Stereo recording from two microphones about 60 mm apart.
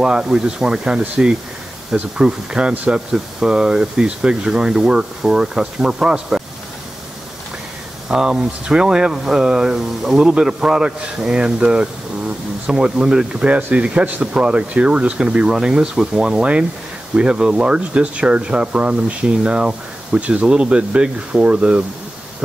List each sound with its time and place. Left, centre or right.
0.0 s speech: centre
8.1 s speech: centre